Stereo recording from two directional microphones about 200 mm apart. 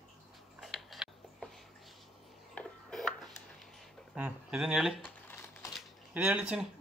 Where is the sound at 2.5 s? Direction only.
5° left (ahead or behind).